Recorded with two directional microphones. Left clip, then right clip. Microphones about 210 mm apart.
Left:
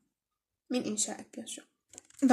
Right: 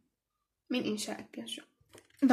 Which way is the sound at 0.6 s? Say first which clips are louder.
Left 1 dB; 20° left (ahead or behind).